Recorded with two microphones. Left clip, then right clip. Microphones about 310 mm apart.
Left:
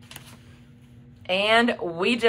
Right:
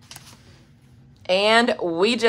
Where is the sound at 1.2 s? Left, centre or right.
Right.